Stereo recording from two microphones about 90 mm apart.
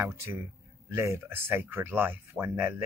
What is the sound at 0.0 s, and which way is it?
Speech, 30° right (ahead or behind).